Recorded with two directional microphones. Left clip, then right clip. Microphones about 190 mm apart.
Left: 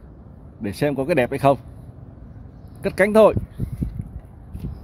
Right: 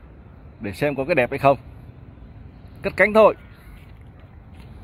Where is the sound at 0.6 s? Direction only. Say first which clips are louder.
Left 1 dB; 15° left (ahead or behind).